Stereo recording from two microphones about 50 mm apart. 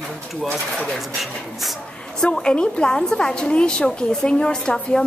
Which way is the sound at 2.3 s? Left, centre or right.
Centre.